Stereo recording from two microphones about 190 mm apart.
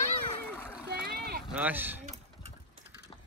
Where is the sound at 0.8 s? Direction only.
55° right (ahead or behind).